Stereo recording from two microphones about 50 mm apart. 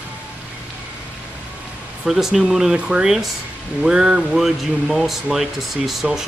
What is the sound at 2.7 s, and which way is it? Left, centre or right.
Speech, centre.